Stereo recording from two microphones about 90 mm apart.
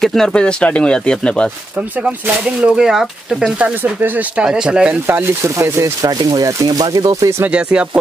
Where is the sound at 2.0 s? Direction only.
15° right (ahead or behind).